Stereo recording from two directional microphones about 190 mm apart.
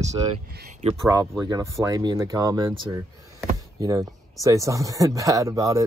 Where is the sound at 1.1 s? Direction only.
15° right (ahead or behind).